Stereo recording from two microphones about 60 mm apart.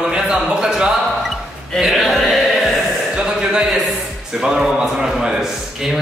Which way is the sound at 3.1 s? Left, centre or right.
Centre.